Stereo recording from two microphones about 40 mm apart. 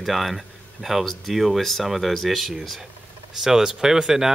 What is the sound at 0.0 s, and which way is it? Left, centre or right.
Speech, centre.